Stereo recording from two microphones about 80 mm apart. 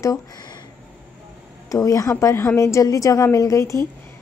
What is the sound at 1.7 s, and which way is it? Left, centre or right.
A woman's voice, left.